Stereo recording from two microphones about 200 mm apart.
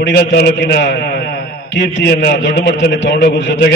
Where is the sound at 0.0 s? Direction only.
55° left (ahead or behind).